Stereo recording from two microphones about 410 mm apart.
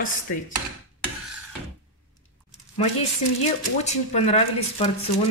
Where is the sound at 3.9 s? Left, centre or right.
Centre.